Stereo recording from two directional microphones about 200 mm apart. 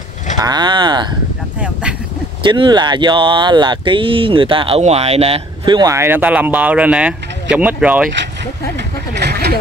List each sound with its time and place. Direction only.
0.4 s speech: 20° right (ahead or behind)
1.6 s speech: 5° right (ahead or behind)
2.4 s speech: 25° right (ahead or behind); by 8.1 s 5° right (ahead or behind)
8.7 s a sound: 55° right (ahead or behind)